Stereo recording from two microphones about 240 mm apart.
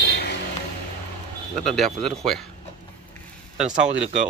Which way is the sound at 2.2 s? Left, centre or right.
Centre.